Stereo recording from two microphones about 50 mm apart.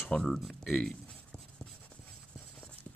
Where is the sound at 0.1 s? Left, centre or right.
Centre.